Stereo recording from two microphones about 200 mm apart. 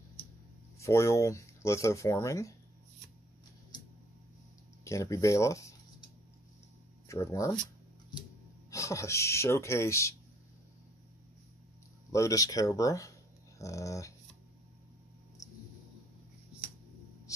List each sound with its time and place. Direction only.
0.7 s speech: 15° left (ahead or behind)
4.8 s speech: 15° left (ahead or behind)
7.1 s speech: 15° left (ahead or behind)
8.6 s speech: 15° left (ahead or behind)
12.1 s speech: 15° left (ahead or behind)